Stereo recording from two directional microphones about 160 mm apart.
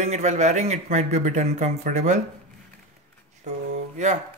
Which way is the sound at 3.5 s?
45° right (ahead or behind).